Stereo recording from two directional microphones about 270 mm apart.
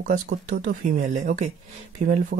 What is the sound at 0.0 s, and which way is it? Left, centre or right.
Speech, right.